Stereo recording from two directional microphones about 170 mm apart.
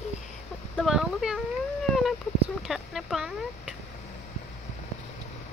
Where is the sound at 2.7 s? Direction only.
Centre (ahead or behind).